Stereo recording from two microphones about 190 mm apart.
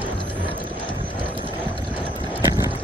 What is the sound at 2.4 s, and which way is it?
Clip-clop, 15° right (ahead or behind).